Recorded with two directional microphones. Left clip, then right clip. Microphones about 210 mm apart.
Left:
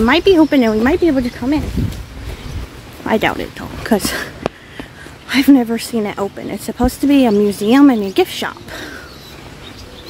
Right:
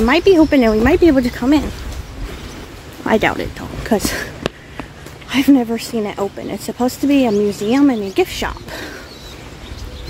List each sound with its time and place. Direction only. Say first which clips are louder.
0.0 s speech: left 1 dB; 10° left (ahead or behind)
1.0 s speech: right 3 dB; 5° right (ahead or behind)
3.0 s speech: right 1 dB; centre (ahead or behind)
5.3 s speech: left 2 dB; 15° left (ahead or behind)
8.4 s speech: even; 5° left (ahead or behind)